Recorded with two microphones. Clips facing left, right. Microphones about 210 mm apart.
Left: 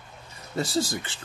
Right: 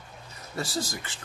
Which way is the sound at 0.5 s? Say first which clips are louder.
Left 5 dB; 30° left (ahead or behind).